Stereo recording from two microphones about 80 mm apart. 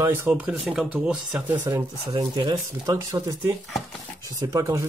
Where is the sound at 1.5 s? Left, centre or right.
Right.